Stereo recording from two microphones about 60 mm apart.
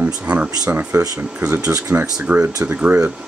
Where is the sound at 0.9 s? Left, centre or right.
Right.